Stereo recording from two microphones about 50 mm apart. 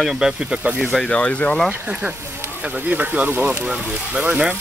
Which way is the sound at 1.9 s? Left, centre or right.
Right.